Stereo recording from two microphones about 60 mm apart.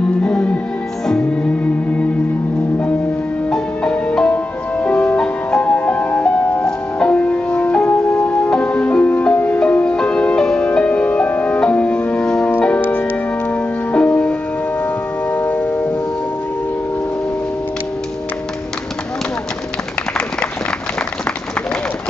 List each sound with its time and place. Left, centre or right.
0.2 s music: centre
3.4 s music: centre
9.6 s music: centre
12.3 s organ: centre
12.5 s music: left
15.3 s tubular bells: left